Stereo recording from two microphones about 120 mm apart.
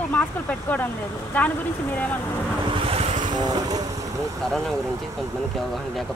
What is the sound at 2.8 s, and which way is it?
Vehicle, 55° right (ahead or behind).